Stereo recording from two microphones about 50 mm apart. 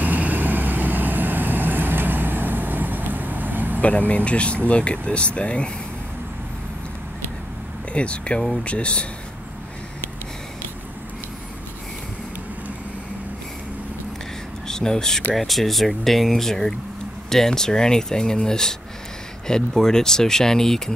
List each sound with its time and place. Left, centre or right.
0.0 s vehicle: right
4.1 s speech: left
7.9 s speech: left
14.7 s speech: centre